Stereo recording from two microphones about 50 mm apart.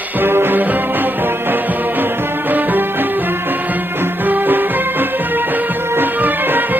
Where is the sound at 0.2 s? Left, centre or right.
Right.